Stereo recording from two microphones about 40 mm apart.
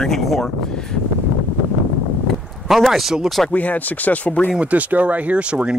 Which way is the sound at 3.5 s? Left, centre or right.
Left.